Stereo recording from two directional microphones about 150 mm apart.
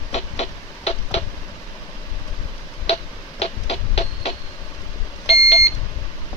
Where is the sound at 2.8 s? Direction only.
40° left (ahead or behind).